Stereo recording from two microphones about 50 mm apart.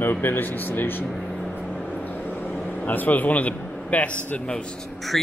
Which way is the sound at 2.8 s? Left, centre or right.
Left.